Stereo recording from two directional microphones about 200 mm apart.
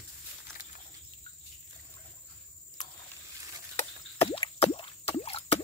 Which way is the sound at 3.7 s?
30° left (ahead or behind).